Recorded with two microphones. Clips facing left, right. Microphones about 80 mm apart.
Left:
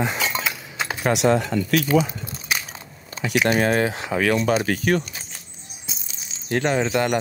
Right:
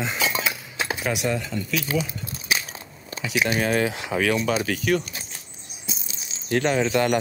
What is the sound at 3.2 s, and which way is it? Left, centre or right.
Speech, left.